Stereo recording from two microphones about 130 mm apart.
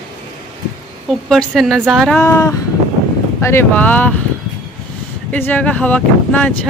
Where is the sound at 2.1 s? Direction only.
25° left (ahead or behind).